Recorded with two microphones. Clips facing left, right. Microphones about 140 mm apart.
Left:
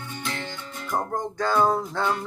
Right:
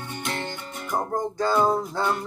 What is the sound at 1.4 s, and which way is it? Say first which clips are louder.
Music: even; 10° right (ahead or behind).